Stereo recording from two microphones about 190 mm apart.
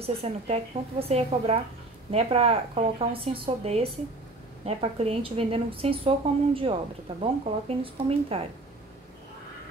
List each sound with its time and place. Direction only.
0.0 s a woman's voice: 30° right (ahead or behind)